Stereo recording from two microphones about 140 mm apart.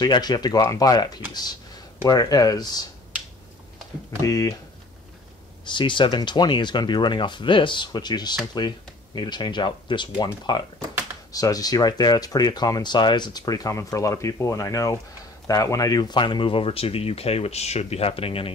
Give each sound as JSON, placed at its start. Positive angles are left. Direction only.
{"t": 0.0, "sound": "speech", "side_deg": 30}
{"t": 4.2, "sound": "speech", "side_deg": 25}
{"t": 5.7, "sound": "speech", "side_deg": 35}